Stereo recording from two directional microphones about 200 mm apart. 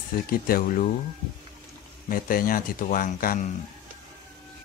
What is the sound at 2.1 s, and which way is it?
Speech, 45° left (ahead or behind).